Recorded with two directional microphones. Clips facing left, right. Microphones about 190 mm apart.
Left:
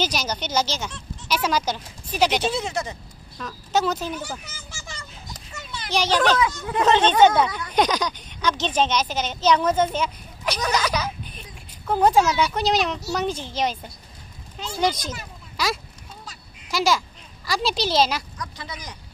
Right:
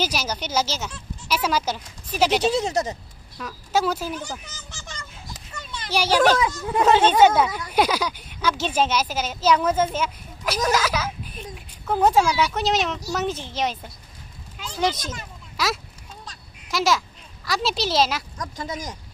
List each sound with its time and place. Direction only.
0.0 s speech: 5° right (ahead or behind)
2.5 s speech: 40° right (ahead or behind)
3.3 s speech: 5° right (ahead or behind)
4.2 s a sound: 5° left (ahead or behind)
5.9 s speech: 10° right (ahead or behind)
6.4 s speech: 30° right (ahead or behind)
6.8 s speech: 10° right (ahead or behind)
14.8 s speech: 5° right (ahead or behind)
16.3 s a sound: centre (ahead or behind)
17.5 s speech: centre (ahead or behind)
18.4 s speech: 45° right (ahead or behind)